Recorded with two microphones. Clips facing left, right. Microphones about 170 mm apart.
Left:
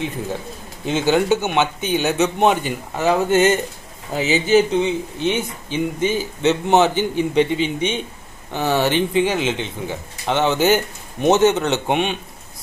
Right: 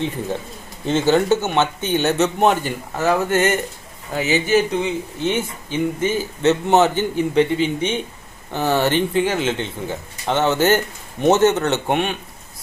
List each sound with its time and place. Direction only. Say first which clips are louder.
0.8 s a man's voice: right 1 dB; 10° left (ahead or behind)